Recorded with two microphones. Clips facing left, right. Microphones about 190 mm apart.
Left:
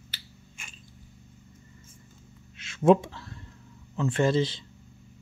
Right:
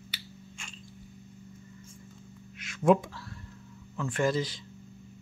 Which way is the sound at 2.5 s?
25° left (ahead or behind).